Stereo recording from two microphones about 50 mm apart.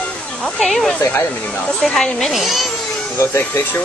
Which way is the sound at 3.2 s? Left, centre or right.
Left.